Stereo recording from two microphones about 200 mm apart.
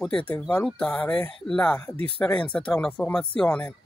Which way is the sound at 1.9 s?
30° right (ahead or behind).